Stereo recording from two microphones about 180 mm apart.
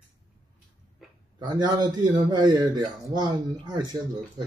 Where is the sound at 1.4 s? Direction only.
25° right (ahead or behind).